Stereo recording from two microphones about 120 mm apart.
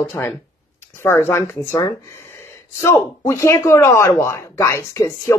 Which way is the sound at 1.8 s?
30° left (ahead or behind).